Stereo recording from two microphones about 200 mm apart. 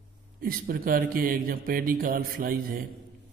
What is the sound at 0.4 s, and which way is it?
Speech, 45° right (ahead or behind).